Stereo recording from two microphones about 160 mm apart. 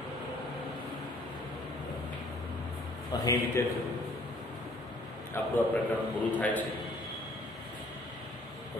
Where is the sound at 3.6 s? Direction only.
15° left (ahead or behind).